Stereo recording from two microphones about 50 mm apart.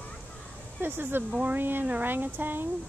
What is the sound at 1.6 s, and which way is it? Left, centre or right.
Speech, right.